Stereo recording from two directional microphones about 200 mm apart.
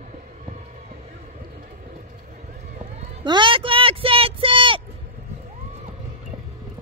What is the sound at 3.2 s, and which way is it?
Vehicle, 25° right (ahead or behind).